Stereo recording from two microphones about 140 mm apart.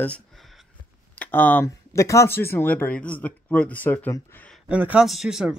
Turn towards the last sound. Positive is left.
turn(degrees=-5)  # may be behind; listen again after turning